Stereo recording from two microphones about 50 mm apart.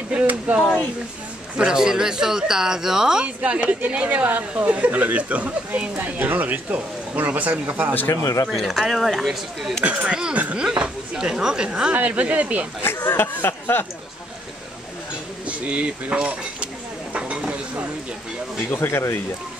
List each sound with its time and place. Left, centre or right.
0.1 s speech: right
1.6 s speech: centre
3.4 s speech: right
8.1 s speech: left
8.5 s speech: centre
10.0 s speech: centre
10.3 s speech: right
10.6 s speech: centre
11.9 s speech: right
12.8 s speech: left
15.4 s speech: right
17.1 s stir: right
18.8 s speech: left